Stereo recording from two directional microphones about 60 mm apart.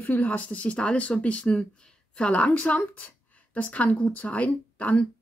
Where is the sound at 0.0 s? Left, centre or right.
Left.